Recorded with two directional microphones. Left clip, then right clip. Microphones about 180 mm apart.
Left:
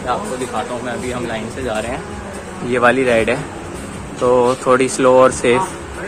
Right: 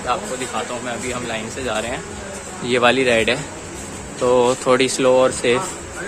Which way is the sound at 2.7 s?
30° right (ahead or behind).